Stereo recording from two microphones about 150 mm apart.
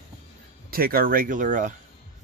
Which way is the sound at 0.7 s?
80° right.